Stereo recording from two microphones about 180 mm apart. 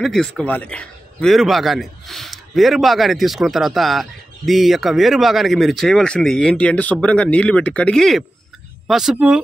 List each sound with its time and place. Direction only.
0.0 s a man's voice: centre (ahead or behind)